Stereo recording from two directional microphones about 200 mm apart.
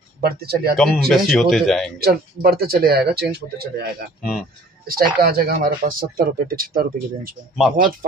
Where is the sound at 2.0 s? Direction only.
50° right (ahead or behind).